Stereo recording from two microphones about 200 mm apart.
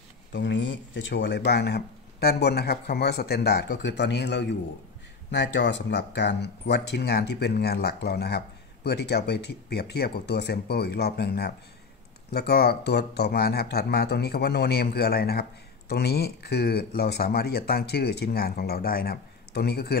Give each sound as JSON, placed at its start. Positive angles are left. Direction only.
{"t": 0.3, "sound": "speech", "side_deg": 65}